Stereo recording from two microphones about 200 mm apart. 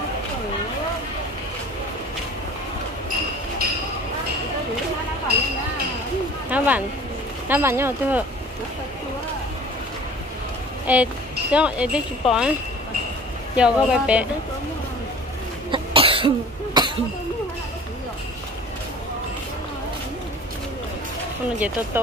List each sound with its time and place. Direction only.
6.5 s a sound: 10° right (ahead or behind)
7.4 s speech: 10° right (ahead or behind)
10.9 s speech: 10° right (ahead or behind)
13.6 s speech: 5° right (ahead or behind)
15.7 s cough: 25° right (ahead or behind)
21.5 s speech: 5° right (ahead or behind)